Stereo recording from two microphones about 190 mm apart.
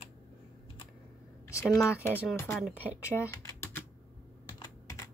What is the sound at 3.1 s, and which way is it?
Typing, 15° left (ahead or behind).